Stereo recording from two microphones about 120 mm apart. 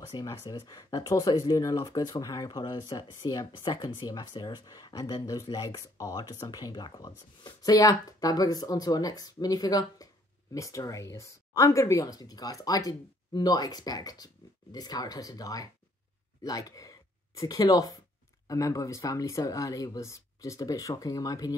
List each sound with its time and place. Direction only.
0.1 s speech: 30° left (ahead or behind)